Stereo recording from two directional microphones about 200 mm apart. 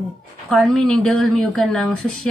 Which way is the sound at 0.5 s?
Centre (ahead or behind).